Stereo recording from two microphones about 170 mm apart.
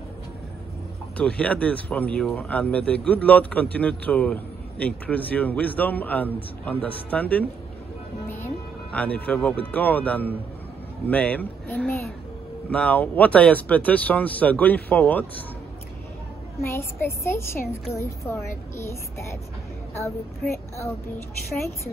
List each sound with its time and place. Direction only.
1.1 s speech: 5° left (ahead or behind)
8.9 s speech: 10° left (ahead or behind)
16.6 s speech: 15° left (ahead or behind)
20.5 s speech: 15° left (ahead or behind)